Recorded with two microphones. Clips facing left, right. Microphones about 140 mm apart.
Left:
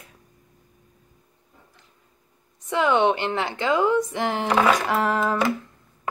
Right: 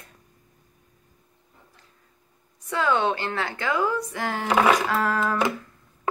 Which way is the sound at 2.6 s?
20° left (ahead or behind).